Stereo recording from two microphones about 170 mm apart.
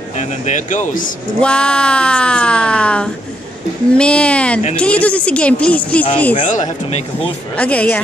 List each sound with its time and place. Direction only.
0.2 s speech: 45° left (ahead or behind)
1.4 s a woman's voice: 5° left (ahead or behind)
6.4 s speech: 45° left (ahead or behind)
7.5 s a woman's voice: 10° left (ahead or behind)